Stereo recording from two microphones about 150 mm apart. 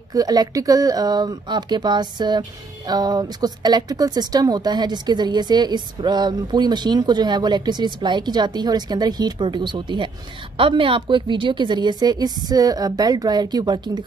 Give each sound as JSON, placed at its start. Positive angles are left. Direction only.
{"t": 0.1, "sound": "speech", "side_deg": -25}